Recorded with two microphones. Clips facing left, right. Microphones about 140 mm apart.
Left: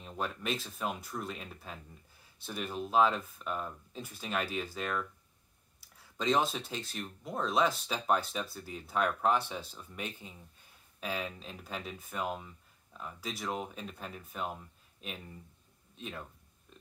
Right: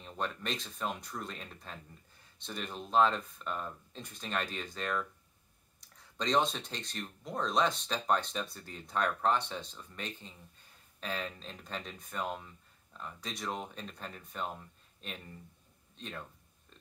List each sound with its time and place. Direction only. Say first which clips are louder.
0.0 s speech: left 1 dB; 5° left (ahead or behind)